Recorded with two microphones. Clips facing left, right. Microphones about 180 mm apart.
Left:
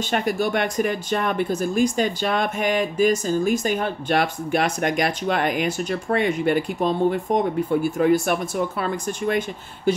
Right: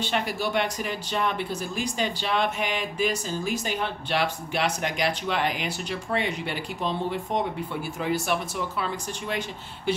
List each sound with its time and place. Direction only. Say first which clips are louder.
0.0 s speech: left 5 dB; 50° left (ahead or behind)